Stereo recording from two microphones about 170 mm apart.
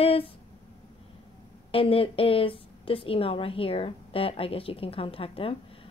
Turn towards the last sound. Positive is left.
turn(degrees=30)  # may be behind; listen again after turning